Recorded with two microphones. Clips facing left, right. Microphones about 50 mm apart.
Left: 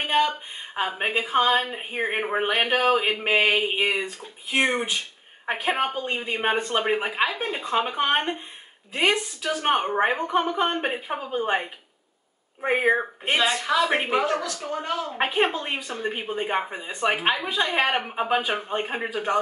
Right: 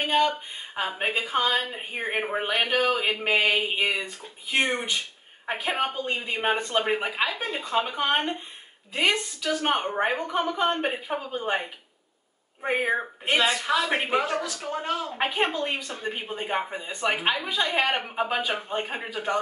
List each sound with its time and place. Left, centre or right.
0.0 s a sound: centre
0.7 s speech: centre
4.0 s speech: centre
12.6 s speech: centre
13.4 s speech: centre
14.5 s a man's voice: centre
15.2 s speech: centre